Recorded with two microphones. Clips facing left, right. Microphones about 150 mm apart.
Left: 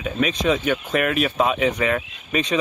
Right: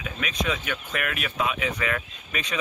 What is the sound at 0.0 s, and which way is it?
Speech, 30° left (ahead or behind).